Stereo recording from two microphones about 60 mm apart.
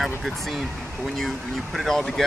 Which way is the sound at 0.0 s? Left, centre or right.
Centre.